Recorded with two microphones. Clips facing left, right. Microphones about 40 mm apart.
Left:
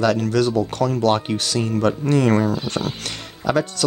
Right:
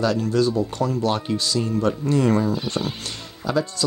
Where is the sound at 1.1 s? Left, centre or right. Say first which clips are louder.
Left 3 dB; left.